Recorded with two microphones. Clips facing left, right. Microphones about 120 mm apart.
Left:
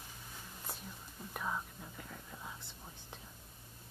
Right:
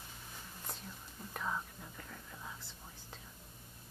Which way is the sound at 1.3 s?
5° left (ahead or behind).